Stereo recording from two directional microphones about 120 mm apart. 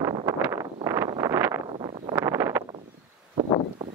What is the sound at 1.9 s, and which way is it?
Vehicle, 55° right (ahead or behind).